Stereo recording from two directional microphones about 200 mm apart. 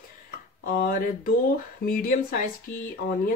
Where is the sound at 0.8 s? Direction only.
45° left (ahead or behind).